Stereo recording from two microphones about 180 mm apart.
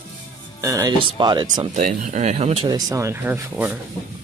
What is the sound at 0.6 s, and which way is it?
Speech, 15° right (ahead or behind).